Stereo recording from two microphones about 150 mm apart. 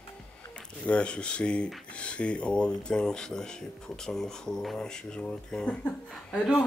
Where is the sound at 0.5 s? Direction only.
5° left (ahead or behind).